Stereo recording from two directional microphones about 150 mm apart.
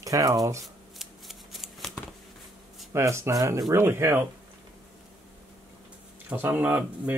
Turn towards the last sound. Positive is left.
turn(degrees=-10)  # may be behind; listen again after turning